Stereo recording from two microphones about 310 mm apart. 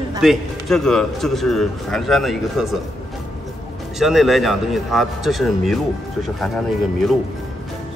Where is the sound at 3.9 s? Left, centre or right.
Centre.